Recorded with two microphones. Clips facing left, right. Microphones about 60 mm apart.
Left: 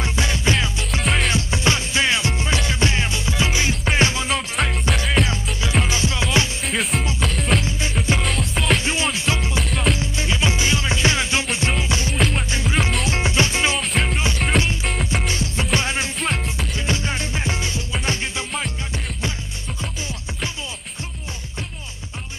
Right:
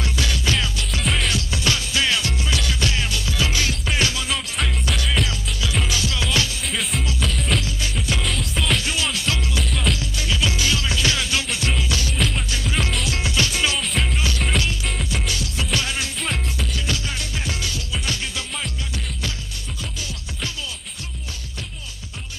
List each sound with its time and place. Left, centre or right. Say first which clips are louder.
0.0 s music: left 2 dB; left
1.0 s music: left 2 dB; centre
1.3 s music: left 3 dB; left
6.6 s music: left 3 dB; centre
7.6 s music: left 4 dB; left
8.2 s music: left 2 dB; centre
8.7 s music: left 2 dB; left